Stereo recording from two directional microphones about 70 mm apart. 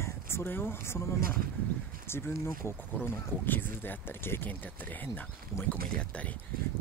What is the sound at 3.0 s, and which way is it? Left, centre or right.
Speech, left.